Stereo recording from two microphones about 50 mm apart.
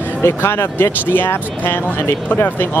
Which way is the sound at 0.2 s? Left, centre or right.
Left.